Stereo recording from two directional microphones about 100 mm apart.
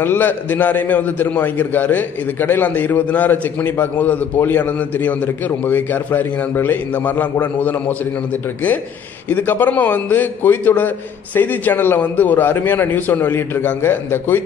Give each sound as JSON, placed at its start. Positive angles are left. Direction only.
{"t": 0.0, "sound": "a man's voice", "side_deg": 20}
{"t": 9.3, "sound": "a man's voice", "side_deg": 20}